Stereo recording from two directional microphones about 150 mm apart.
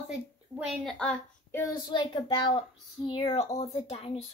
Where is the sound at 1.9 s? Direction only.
30° left (ahead or behind).